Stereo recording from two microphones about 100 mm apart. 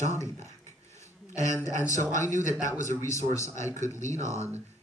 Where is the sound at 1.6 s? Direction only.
30° left (ahead or behind).